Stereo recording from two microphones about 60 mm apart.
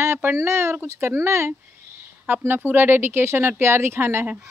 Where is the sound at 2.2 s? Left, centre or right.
Right.